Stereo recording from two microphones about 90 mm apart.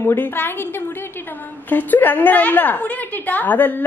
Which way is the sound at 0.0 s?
25° left (ahead or behind).